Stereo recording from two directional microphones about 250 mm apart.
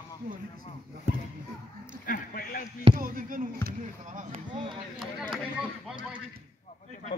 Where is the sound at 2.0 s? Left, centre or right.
Left.